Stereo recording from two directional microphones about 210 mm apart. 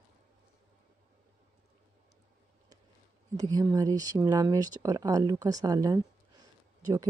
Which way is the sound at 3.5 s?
15° right (ahead or behind).